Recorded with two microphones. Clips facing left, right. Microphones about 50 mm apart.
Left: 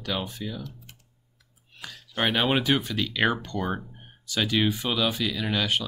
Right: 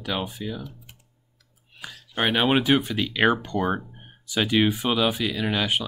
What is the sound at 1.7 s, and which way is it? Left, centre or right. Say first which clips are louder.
Speech: right 2 dB; centre.